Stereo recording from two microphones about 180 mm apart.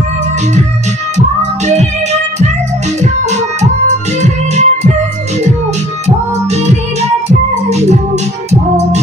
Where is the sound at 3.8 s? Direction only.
40° right (ahead or behind).